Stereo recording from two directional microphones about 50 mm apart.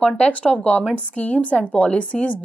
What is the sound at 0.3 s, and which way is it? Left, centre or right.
A woman's voice, left.